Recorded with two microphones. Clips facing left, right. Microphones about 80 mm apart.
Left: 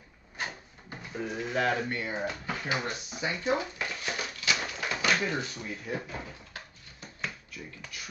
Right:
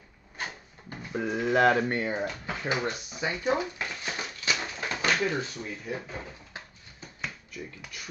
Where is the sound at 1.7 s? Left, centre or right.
Right.